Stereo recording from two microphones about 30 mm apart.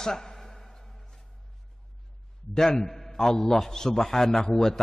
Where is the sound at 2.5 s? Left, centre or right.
Centre.